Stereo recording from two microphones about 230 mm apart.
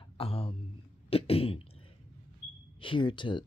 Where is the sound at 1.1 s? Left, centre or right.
Left.